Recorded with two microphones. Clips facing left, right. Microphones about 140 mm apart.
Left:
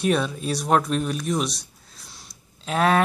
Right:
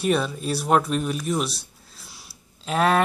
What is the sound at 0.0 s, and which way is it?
Speech, centre (ahead or behind).